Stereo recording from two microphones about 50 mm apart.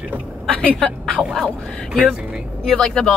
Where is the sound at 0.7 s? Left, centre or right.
Centre.